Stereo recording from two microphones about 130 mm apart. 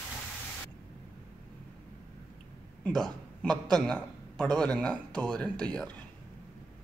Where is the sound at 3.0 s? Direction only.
5° left (ahead or behind).